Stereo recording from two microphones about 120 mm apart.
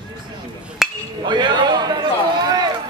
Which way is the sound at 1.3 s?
40° right (ahead or behind).